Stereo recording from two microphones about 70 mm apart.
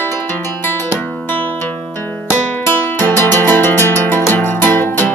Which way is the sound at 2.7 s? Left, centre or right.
Left.